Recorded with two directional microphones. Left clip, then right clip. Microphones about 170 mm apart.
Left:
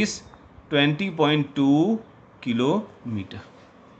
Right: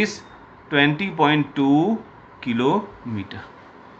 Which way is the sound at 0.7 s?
70° left (ahead or behind).